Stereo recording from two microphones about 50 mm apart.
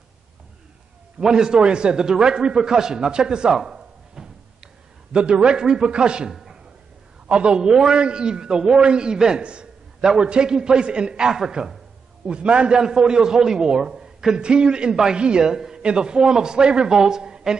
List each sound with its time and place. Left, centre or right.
1.2 s a man's voice: centre
6.3 s a sound: centre
7.2 s a man's voice: centre
12.3 s a man's voice: right